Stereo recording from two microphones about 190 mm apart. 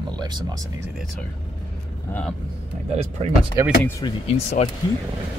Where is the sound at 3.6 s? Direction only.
15° right (ahead or behind).